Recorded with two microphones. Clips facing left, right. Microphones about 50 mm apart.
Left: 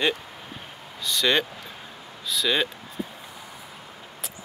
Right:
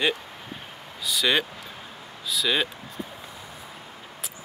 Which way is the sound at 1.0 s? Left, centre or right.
Centre.